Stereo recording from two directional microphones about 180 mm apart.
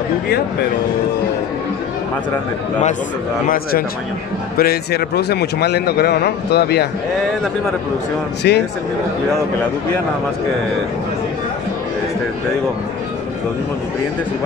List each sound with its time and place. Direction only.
3.4 s a man's voice: 55° left (ahead or behind)
8.4 s a man's voice: 60° left (ahead or behind)